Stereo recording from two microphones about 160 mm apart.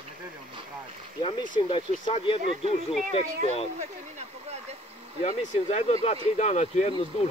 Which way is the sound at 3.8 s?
45° right (ahead or behind).